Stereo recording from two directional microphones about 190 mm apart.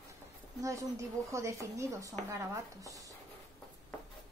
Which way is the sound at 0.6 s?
15° right (ahead or behind).